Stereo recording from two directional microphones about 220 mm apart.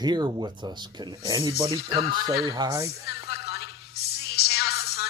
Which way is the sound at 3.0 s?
45° left (ahead or behind).